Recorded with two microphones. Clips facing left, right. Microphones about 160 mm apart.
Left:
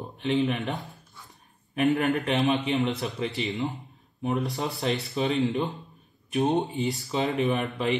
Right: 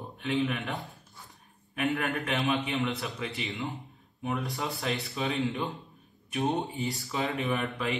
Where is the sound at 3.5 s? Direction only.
20° left (ahead or behind).